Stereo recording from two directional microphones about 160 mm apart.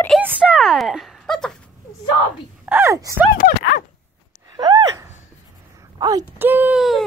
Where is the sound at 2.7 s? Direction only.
15° right (ahead or behind).